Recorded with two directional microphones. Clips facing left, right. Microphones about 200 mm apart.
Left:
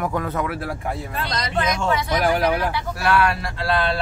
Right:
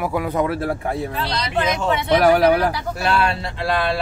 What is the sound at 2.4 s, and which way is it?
Speech, 35° right (ahead or behind).